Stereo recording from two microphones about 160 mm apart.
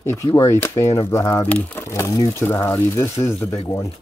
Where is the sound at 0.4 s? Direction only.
15° left (ahead or behind).